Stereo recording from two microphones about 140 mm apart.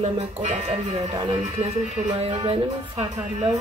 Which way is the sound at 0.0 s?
55° right (ahead or behind).